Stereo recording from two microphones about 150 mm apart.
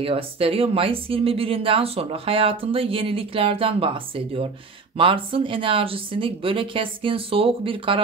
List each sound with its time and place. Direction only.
0.0 s speech: 35° right (ahead or behind)